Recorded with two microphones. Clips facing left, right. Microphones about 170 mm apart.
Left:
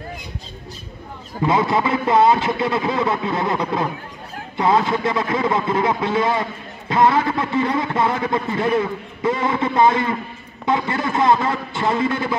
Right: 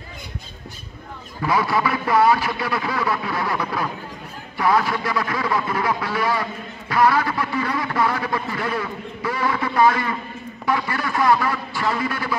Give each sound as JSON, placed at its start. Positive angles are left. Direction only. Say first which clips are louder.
{"t": 1.4, "sound": "a man's voice", "louder": "left 3 dB", "side_deg": 20}